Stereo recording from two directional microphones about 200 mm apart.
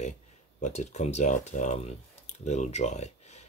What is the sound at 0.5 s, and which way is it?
Speech, 35° left (ahead or behind).